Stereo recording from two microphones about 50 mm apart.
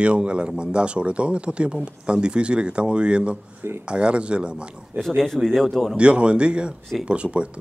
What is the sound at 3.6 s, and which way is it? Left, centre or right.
Speech, right.